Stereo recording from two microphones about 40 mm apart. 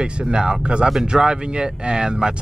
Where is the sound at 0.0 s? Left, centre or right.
Right.